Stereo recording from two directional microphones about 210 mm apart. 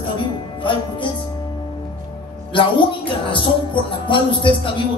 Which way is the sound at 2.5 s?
25° left (ahead or behind).